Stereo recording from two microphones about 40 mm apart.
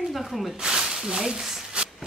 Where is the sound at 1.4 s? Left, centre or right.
Centre.